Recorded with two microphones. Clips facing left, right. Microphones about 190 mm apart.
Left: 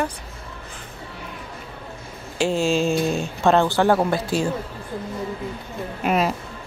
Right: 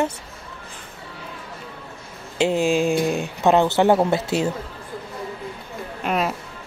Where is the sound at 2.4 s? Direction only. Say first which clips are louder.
Right 1 dB; 15° right (ahead or behind).